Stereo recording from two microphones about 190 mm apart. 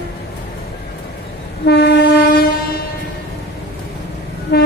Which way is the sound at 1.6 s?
60° left (ahead or behind).